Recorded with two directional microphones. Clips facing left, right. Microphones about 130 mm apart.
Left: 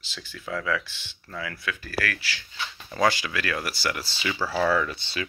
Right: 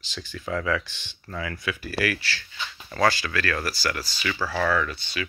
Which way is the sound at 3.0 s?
15° left (ahead or behind).